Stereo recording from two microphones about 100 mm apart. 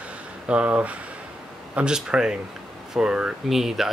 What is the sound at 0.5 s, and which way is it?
Speech, 10° right (ahead or behind).